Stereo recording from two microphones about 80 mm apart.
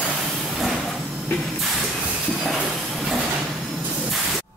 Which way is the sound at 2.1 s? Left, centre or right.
Centre.